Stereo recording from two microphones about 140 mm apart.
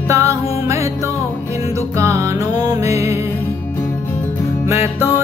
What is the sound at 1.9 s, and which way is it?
Music, 20° right (ahead or behind).